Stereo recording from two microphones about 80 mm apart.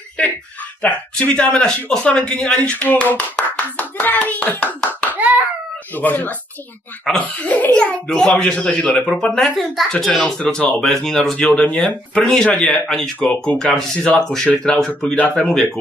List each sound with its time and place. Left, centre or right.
0.8 s speech: centre
5.1 s hands: centre
5.9 s a child's voice: left